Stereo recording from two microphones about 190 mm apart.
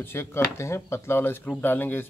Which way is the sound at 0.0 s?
10° left (ahead or behind).